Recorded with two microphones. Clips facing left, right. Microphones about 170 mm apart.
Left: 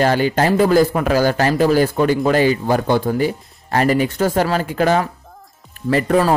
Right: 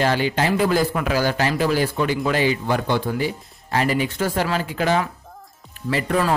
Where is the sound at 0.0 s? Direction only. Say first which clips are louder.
Left 4 dB; 45° left (ahead or behind).